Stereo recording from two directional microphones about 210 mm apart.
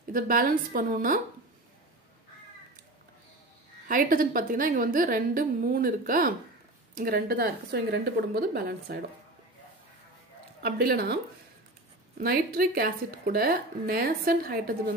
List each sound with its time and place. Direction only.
0.1 s a woman's voice: 40° right (ahead or behind)
3.8 s a woman's voice: 40° right (ahead or behind)
10.6 s speech: 45° right (ahead or behind)
12.2 s speech: 45° right (ahead or behind)